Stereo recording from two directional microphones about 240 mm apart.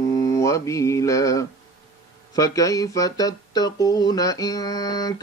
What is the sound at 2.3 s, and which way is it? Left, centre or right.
Speech, centre.